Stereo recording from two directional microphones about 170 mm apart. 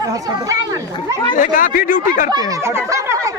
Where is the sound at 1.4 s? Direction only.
55° left (ahead or behind).